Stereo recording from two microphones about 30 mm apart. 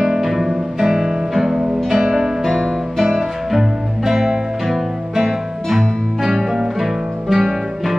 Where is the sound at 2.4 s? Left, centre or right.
Centre.